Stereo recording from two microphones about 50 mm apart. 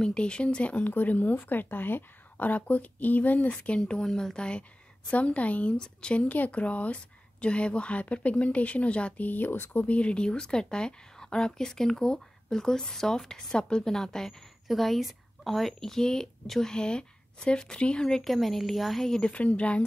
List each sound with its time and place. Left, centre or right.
0.0 s speech: centre
6.2 s speech: left
9.8 s speech: left
14.7 s speech: centre
18.2 s a woman's voice: centre
19.0 s speech: centre
19.3 s speech: left